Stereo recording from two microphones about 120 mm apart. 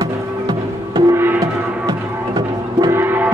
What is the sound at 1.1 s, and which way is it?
Music, 20° right (ahead or behind).